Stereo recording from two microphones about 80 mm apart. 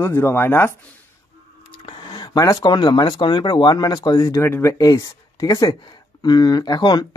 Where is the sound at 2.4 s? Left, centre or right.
Left.